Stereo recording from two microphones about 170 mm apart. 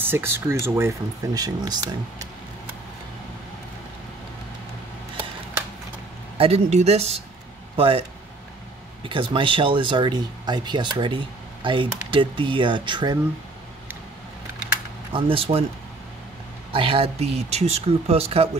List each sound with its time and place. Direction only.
0.0 s speech: 15° right (ahead or behind)
6.3 s speech: 35° right (ahead or behind)
9.0 s speech: 30° right (ahead or behind)
15.1 s speech: 35° right (ahead or behind)
16.7 s speech: 35° right (ahead or behind)